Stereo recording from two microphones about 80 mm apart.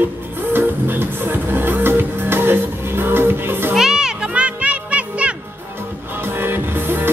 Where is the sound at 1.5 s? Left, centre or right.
Right.